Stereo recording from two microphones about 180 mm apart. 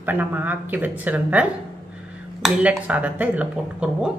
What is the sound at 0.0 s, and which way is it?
Speech, 10° right (ahead or behind).